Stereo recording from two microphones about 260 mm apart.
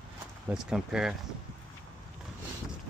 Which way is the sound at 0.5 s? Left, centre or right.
Centre.